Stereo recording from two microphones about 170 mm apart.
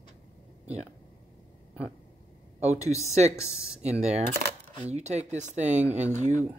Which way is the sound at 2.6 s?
40° right (ahead or behind).